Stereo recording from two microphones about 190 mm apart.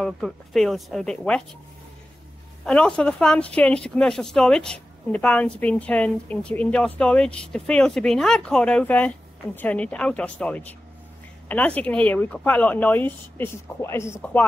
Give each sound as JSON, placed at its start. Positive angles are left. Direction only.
{"t": 0.0, "sound": "speech", "side_deg": 0}
{"t": 2.6, "sound": "speech", "side_deg": 5}